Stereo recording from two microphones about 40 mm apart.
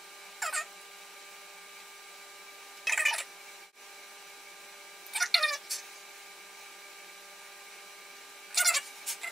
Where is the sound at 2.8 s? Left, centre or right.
Centre.